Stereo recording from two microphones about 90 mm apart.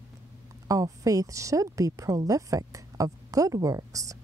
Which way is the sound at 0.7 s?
40° right (ahead or behind).